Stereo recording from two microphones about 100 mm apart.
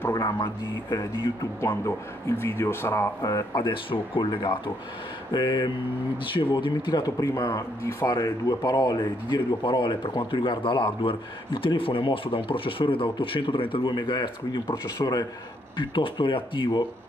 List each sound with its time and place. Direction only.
0.1 s speech: 40° left (ahead or behind)
1.6 s speech: 30° left (ahead or behind)
3.2 s speech: 40° left (ahead or behind)
3.7 s speech: 60° left (ahead or behind); by 8.2 s 30° left (ahead or behind)
8.2 s speech: 40° left (ahead or behind)
15.8 s speech: 55° left (ahead or behind)